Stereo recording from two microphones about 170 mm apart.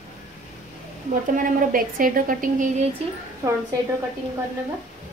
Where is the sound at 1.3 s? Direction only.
55° right (ahead or behind).